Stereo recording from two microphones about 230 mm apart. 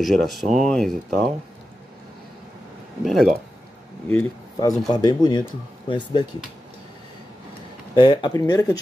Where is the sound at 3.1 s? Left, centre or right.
Centre.